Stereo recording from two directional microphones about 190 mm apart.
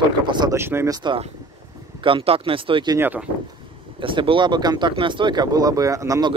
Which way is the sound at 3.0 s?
10° right (ahead or behind).